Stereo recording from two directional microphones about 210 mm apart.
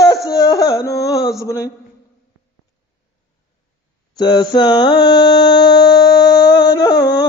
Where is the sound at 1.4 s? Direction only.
15° left (ahead or behind).